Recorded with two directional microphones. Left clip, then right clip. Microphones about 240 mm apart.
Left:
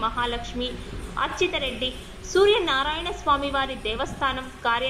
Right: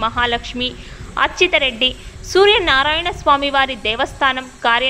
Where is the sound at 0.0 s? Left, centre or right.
Right.